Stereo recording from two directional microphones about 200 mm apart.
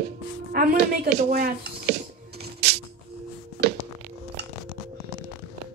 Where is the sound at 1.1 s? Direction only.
50° right (ahead or behind).